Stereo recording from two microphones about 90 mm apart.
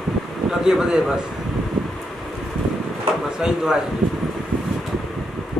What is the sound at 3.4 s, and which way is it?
Speech, 5° right (ahead or behind).